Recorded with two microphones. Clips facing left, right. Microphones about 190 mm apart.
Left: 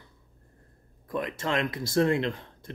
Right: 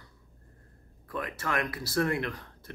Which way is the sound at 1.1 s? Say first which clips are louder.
Left 4 dB; 20° left (ahead or behind).